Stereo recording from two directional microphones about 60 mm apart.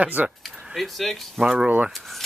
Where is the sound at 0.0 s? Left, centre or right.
Right.